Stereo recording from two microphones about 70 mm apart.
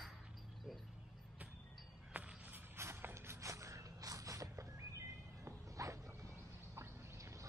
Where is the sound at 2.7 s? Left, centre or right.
Right.